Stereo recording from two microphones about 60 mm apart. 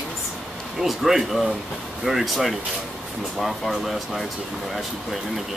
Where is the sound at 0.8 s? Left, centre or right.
Centre.